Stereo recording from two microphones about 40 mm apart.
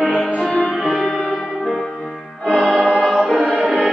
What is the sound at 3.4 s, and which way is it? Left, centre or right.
Music, right.